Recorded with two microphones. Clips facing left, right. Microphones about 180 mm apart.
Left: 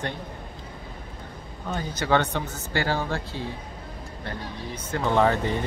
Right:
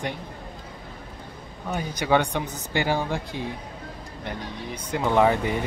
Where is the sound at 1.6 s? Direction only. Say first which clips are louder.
Right 1 dB; 15° right (ahead or behind).